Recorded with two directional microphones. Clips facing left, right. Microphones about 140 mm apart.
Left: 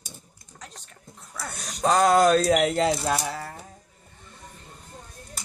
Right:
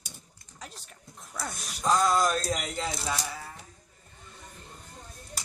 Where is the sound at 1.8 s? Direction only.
70° left (ahead or behind).